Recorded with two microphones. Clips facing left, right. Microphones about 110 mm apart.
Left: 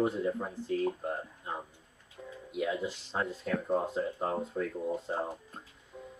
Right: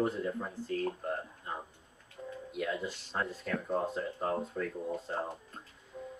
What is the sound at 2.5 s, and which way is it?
Speech, 5° left (ahead or behind).